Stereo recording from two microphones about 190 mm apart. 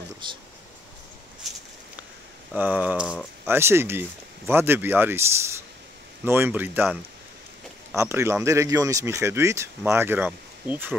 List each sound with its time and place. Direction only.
0.2 s speech: 25° right (ahead or behind)
2.5 s speech: 10° right (ahead or behind)